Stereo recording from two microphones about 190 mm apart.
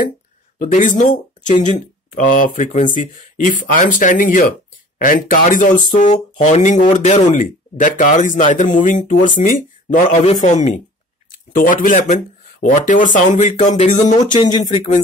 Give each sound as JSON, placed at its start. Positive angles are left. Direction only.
{"t": 0.6, "sound": "speech", "side_deg": 40}
{"t": 11.5, "sound": "speech", "side_deg": 45}
{"t": 14.3, "sound": "speech", "side_deg": 20}